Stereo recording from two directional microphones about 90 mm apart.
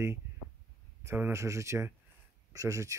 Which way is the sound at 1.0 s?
30° right (ahead or behind).